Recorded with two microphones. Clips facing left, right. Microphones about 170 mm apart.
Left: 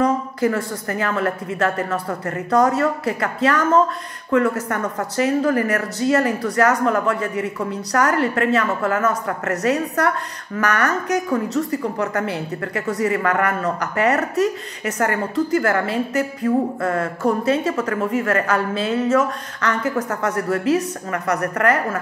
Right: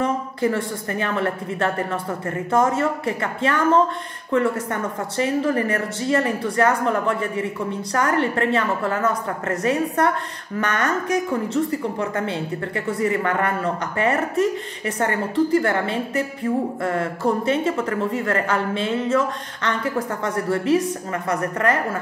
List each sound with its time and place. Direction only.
0.0 s a woman's voice: 25° right (ahead or behind)